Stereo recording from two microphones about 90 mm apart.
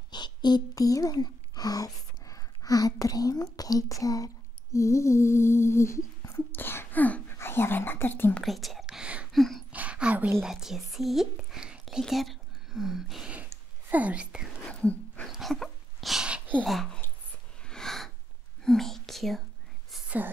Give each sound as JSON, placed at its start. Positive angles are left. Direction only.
{"t": 0.1, "sound": "speech", "side_deg": 55}
{"t": 4.7, "sound": "humming", "side_deg": 35}
{"t": 6.5, "sound": "speech", "side_deg": 25}
{"t": 8.5, "sound": "speech", "side_deg": 0}
{"t": 9.3, "sound": "a sound", "side_deg": 0}
{"t": 9.7, "sound": "a sound", "side_deg": -15}
{"t": 10.4, "sound": "speech", "side_deg": -5}
{"t": 13.5, "sound": "a sound", "side_deg": -20}
{"t": 14.7, "sound": "dog", "side_deg": 15}
{"t": 15.2, "sound": "dog", "side_deg": 0}
{"t": 16.6, "sound": "a sound", "side_deg": 0}
{"t": 18.6, "sound": "speech", "side_deg": 5}